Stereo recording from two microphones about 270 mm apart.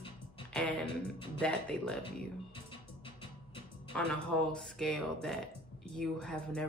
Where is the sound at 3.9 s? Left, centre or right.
Centre.